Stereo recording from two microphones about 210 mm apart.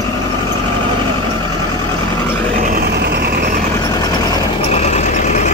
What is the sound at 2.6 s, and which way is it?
Vehicle, 45° right (ahead or behind).